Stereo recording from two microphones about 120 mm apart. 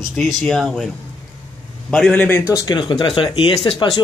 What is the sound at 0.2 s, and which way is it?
Speech, centre (ahead or behind).